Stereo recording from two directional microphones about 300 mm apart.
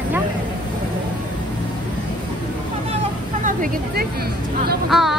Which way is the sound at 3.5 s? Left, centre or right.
Right.